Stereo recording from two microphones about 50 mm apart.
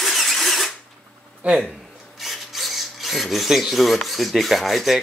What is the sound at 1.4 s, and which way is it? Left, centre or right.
Speech, right.